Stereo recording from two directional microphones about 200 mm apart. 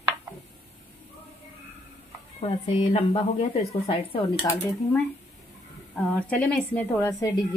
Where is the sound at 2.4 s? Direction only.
30° left (ahead or behind).